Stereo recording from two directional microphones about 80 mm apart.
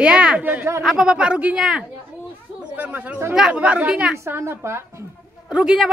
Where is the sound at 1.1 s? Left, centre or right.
Centre.